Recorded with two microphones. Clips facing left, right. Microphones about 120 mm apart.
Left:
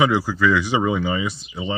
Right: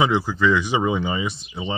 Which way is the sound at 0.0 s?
20° right (ahead or behind).